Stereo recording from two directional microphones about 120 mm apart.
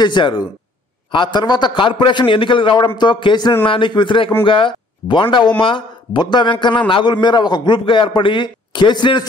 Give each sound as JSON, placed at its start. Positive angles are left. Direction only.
{"t": 0.0, "sound": "a man's voice", "side_deg": 40}